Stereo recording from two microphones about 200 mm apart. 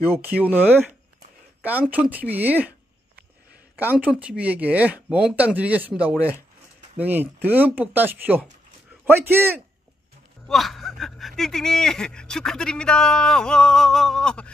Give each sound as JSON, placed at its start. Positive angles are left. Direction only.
{"t": 0.4, "sound": "speech", "side_deg": -10}
{"t": 4.0, "sound": "a man's voice", "side_deg": -5}
{"t": 10.4, "sound": "speech", "side_deg": 0}